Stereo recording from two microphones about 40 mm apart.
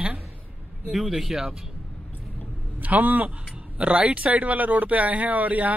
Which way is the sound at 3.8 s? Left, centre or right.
Right.